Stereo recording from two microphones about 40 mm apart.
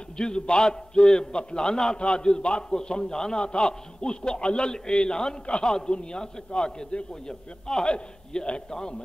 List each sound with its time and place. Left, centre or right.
0.2 s a man's voice: centre